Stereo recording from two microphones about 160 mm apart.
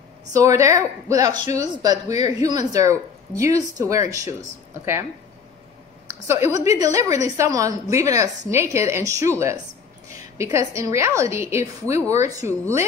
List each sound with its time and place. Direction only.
0.3 s speech: 20° right (ahead or behind)
1.4 s speech: 45° left (ahead or behind)
1.8 s speech: 25° right (ahead or behind)
6.0 s a woman's voice: 20° right (ahead or behind)